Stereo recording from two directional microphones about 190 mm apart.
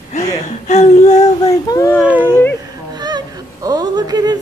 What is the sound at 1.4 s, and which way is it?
Speech, 15° left (ahead or behind).